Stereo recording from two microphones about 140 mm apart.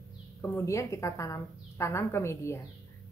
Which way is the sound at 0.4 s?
20° left (ahead or behind).